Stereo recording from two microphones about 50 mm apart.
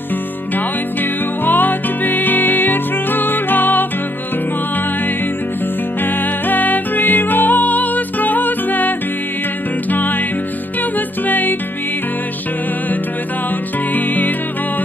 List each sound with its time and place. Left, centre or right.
1.4 s music: left
6.0 s music: left
11.2 s music: left
13.9 s music: left